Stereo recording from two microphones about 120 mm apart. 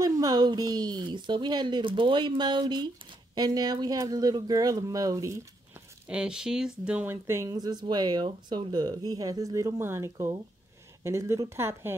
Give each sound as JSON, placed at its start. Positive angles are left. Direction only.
{"t": 0.0, "sound": "speech", "side_deg": -35}
{"t": 6.0, "sound": "speech", "side_deg": -10}
{"t": 7.4, "sound": "a woman's voice", "side_deg": -35}